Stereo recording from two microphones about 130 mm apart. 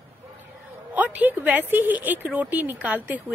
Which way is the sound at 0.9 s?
15° right (ahead or behind).